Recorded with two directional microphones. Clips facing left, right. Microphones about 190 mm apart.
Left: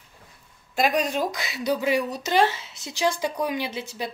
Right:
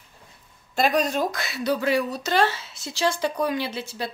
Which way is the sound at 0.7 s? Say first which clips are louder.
Right 1 dB; 10° left (ahead or behind).